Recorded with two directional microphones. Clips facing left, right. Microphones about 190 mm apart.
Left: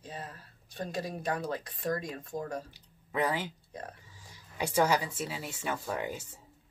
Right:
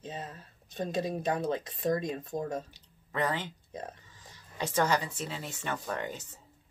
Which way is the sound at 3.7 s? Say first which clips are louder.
Right 3 dB; 20° right (ahead or behind).